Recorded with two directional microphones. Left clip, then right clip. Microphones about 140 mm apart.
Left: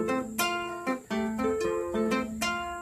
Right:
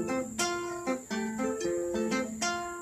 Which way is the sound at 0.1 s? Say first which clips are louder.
Left 3 dB; 25° left (ahead or behind).